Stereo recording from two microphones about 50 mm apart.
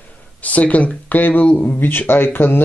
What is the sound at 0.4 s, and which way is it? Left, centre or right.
Speech, left.